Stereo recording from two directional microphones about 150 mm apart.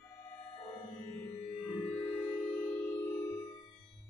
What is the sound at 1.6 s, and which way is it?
Music, 10° left (ahead or behind).